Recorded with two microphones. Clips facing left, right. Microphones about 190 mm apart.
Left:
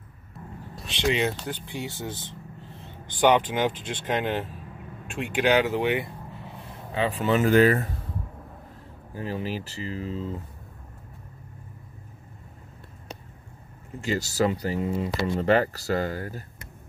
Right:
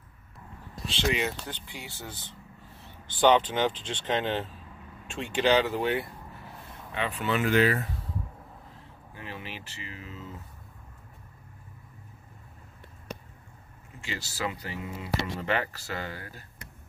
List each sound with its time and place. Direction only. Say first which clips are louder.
0.8 s speech: left 4 dB; 25° left (ahead or behind)
6.9 s speech: left 6 dB; 35° left (ahead or behind)
9.1 s speech: left 10 dB; 40° left (ahead or behind)
14.0 s speech: left 10 dB; 40° left (ahead or behind)